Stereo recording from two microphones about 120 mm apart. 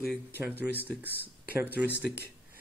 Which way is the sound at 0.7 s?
15° left (ahead or behind).